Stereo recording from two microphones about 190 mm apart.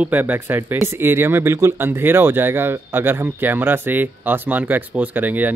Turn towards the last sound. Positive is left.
turn(degrees=-10)  # may be behind; listen again after turning